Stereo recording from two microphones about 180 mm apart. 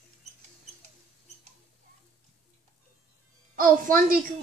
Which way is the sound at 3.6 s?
50° right (ahead or behind).